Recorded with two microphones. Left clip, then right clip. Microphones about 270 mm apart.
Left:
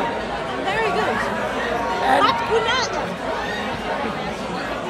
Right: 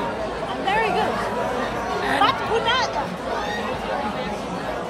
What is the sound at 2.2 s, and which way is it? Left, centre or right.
Speech, centre.